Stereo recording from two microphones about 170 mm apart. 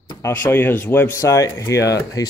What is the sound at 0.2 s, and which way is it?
Speech, 15° left (ahead or behind).